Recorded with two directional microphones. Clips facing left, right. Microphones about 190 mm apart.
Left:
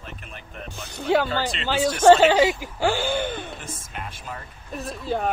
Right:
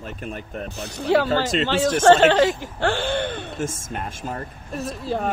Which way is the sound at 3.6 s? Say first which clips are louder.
Right 8 dB; 45° right (ahead or behind).